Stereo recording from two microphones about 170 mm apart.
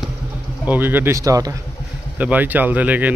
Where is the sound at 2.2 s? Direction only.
10° right (ahead or behind).